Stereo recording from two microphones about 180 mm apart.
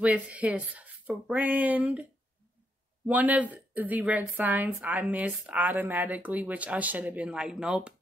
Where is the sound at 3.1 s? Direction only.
10° right (ahead or behind).